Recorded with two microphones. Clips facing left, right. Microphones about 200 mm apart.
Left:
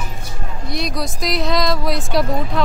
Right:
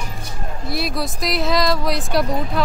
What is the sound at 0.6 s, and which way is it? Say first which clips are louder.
Speech: even; 5° right (ahead or behind).